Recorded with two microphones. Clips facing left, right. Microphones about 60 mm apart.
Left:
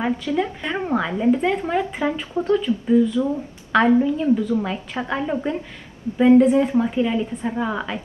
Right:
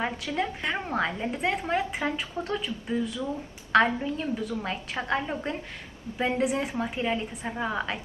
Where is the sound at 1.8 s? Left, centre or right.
Centre.